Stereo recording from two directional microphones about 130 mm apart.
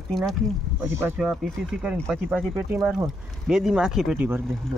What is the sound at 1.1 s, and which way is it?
Speech, centre (ahead or behind).